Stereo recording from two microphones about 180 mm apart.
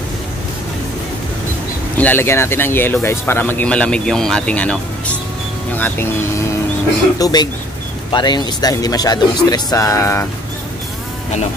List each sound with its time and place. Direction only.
2.0 s speech: 10° left (ahead or behind)
5.8 s speech: 10° left (ahead or behind)
7.2 s speech: 20° left (ahead or behind)